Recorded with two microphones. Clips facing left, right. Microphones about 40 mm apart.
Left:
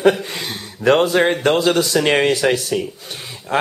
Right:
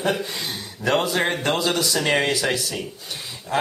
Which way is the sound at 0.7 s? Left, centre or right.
Left.